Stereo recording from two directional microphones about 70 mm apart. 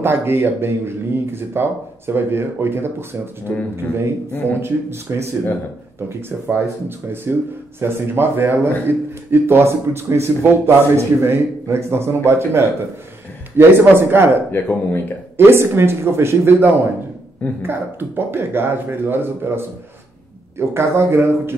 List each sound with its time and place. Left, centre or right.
0.0 s a man's voice: right
4.3 s speech: left
4.6 s a man's voice: right
7.8 s a man's voice: right
14.5 s speech: left
15.3 s a man's voice: right